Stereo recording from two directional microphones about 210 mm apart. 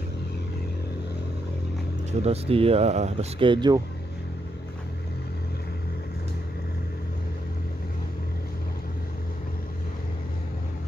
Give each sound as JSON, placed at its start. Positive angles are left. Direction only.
{"t": 2.2, "sound": "speech", "side_deg": -30}